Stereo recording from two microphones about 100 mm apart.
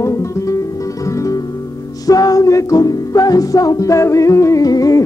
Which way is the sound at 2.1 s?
35° left (ahead or behind).